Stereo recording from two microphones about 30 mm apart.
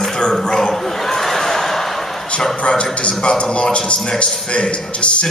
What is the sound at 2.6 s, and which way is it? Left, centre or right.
A man's voice, left.